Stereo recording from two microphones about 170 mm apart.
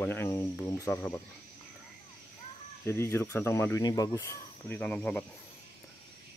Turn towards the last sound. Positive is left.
turn(degrees=10)  # may be behind; listen again after turning